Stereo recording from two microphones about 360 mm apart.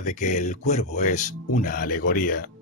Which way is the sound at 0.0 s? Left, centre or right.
Left.